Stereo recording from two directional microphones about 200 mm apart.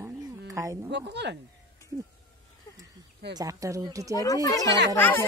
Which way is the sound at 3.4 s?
15° right (ahead or behind).